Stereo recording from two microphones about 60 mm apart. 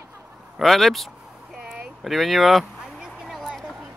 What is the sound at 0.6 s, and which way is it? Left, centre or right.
Speech, centre.